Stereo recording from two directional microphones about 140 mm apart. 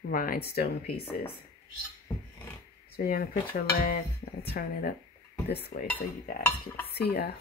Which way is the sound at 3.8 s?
90° left.